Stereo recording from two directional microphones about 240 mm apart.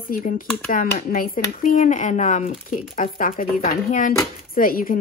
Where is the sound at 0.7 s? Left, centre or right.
Left.